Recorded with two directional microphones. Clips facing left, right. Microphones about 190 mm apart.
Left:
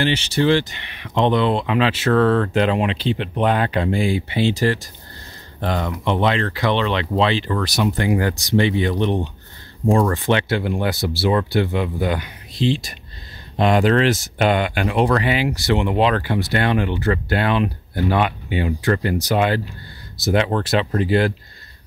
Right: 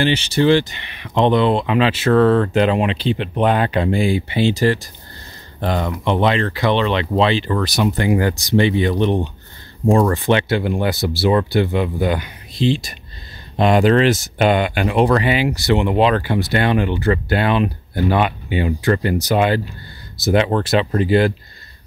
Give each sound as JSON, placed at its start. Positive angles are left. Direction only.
{"t": 0.0, "sound": "speech", "side_deg": -15}